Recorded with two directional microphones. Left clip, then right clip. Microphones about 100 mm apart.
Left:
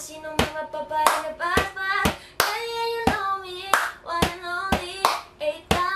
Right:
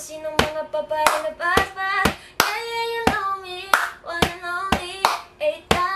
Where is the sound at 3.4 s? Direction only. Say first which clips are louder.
Right 2 dB; 15° left (ahead or behind).